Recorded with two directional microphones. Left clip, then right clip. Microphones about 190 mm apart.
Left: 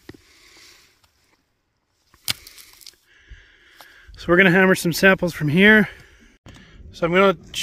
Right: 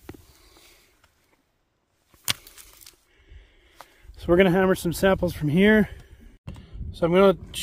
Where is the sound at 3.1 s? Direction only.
5° right (ahead or behind).